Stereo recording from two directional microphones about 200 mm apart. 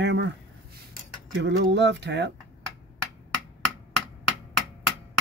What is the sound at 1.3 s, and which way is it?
Speech, 60° right (ahead or behind).